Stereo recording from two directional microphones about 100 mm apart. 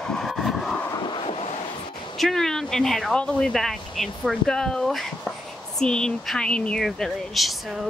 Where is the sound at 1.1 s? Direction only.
70° left (ahead or behind).